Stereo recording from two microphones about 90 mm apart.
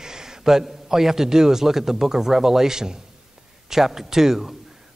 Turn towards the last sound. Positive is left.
turn(degrees=-5)  # may be behind; listen again after turning